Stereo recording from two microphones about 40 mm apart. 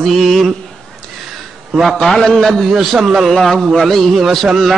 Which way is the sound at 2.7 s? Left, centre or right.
Centre.